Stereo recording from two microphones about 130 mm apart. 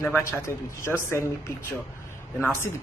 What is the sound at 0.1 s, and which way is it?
A man's voice, 20° left (ahead or behind).